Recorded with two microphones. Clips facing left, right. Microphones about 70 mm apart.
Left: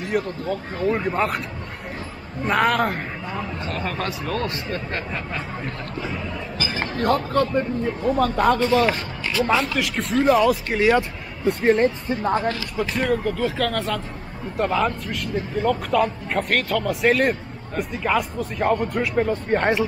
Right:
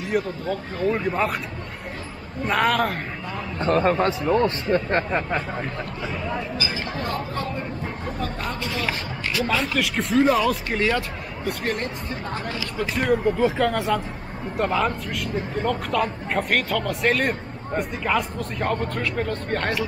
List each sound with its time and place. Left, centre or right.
0.0 s speech: centre
2.4 s speech: centre
3.5 s speech: right
3.9 s speech: right
6.6 s speech: left
8.5 s speech: left
9.8 s speech: centre
10.9 s speech: left
12.7 s speech: centre
13.2 s speech: centre
14.6 s speech: centre